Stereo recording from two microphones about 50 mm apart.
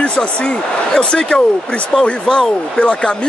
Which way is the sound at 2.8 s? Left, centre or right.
Left.